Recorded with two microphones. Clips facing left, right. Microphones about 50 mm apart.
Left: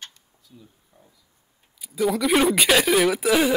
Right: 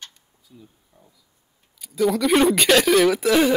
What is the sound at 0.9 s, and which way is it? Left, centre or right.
Speech, left.